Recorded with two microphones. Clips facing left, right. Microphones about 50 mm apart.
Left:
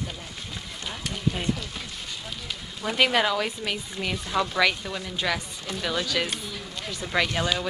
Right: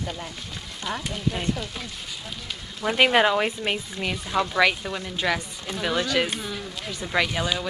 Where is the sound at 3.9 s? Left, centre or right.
Centre.